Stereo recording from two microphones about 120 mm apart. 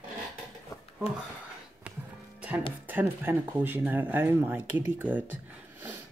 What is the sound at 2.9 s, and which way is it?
Speech, 15° right (ahead or behind).